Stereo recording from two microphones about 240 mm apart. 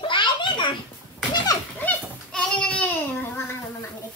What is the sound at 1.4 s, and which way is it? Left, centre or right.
Goat, centre.